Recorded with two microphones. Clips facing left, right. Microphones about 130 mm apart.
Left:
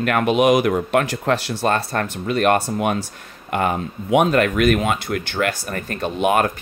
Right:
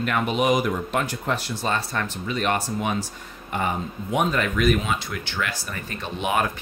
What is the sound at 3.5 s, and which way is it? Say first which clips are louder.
Speech: left 5 dB; 70° left (ahead or behind).